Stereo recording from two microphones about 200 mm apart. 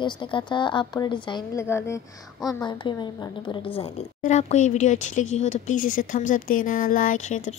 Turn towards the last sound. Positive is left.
turn(degrees=35)  # may be behind; listen again after turning